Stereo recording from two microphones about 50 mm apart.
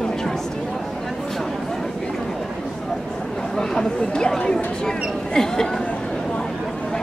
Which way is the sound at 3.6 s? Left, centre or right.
Centre.